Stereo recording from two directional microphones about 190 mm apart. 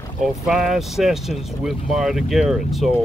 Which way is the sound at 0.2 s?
Centre (ahead or behind).